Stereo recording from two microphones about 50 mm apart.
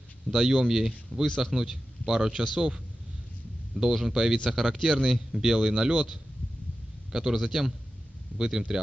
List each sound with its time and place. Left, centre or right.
0.3 s a man's voice: centre
7.1 s speech: centre